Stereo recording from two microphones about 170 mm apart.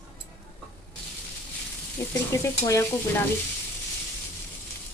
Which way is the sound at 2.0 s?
15° left (ahead or behind).